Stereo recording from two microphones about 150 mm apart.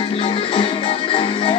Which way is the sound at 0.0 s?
35° left (ahead or behind).